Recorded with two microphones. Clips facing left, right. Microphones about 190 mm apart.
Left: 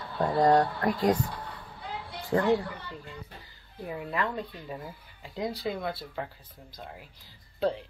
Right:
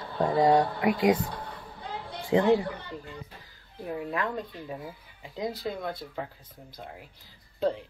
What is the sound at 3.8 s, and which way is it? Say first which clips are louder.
Speech: right 1 dB; centre (ahead or behind).